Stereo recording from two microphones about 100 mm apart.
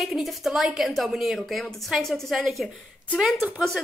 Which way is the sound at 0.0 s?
Centre (ahead or behind).